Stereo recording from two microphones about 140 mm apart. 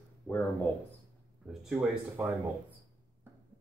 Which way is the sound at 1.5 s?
5° right (ahead or behind).